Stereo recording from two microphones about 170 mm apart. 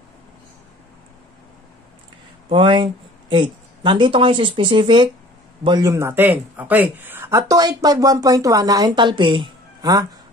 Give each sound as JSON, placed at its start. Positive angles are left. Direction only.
{"t": 2.5, "sound": "speech", "side_deg": -30}